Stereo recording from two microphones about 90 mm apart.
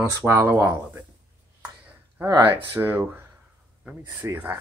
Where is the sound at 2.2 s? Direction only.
20° right (ahead or behind).